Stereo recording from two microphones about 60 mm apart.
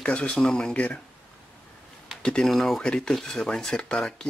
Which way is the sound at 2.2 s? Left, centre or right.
Centre.